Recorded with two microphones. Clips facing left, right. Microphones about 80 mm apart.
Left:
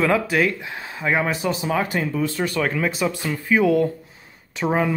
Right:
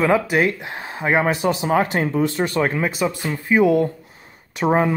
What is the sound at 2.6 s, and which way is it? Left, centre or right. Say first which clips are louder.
Speech: right 1 dB; right.